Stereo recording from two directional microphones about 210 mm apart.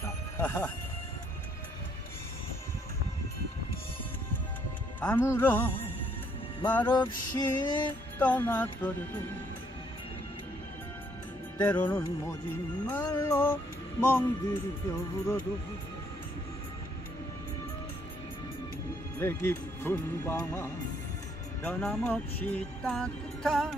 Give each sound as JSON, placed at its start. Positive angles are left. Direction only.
{"t": 0.0, "sound": "music", "side_deg": 10}
{"t": 5.0, "sound": "speech", "side_deg": 10}
{"t": 6.9, "sound": "female singing", "side_deg": 20}
{"t": 7.8, "sound": "speech", "side_deg": 5}
{"t": 11.5, "sound": "speech", "side_deg": 10}
{"t": 19.1, "sound": "speech", "side_deg": 10}